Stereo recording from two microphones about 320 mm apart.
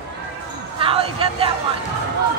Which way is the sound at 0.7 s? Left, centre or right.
Centre.